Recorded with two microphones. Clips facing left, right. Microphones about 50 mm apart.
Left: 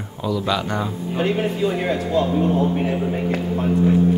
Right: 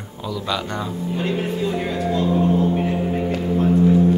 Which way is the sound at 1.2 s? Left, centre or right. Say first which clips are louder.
Left 4 dB; left.